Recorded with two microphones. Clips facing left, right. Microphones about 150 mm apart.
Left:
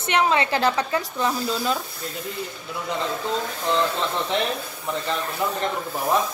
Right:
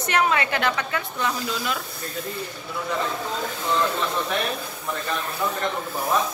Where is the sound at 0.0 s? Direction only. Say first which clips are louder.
Left 1 dB; 25° left (ahead or behind).